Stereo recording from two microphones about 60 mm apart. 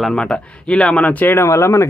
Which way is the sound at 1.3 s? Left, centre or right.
Left.